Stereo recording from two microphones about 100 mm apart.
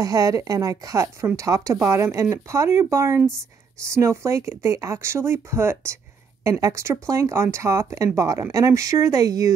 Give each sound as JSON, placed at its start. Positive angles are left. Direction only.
{"t": 0.0, "sound": "a woman's voice", "side_deg": -35}